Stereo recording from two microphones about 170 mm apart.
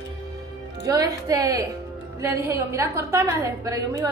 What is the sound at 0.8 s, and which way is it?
A woman's voice, 20° right (ahead or behind).